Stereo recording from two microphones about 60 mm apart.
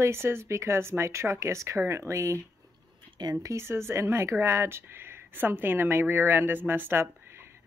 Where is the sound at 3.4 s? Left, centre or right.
Right.